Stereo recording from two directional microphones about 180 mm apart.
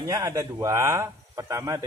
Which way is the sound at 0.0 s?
20° right (ahead or behind).